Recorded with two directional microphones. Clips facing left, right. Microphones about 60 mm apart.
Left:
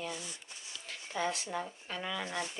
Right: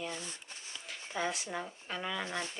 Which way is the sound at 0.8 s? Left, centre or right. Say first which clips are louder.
Left 1 dB; centre.